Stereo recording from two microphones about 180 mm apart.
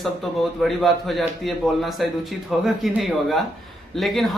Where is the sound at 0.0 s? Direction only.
Centre (ahead or behind).